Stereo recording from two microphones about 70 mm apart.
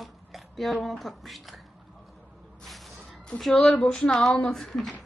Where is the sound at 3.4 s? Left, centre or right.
Centre.